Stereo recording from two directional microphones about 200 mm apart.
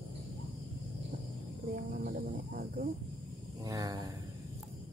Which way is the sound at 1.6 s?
50° right (ahead or behind).